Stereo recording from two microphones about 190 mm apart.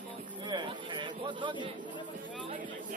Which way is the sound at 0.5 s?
25° right (ahead or behind).